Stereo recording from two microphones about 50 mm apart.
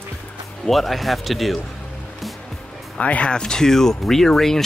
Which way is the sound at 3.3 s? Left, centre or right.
Centre.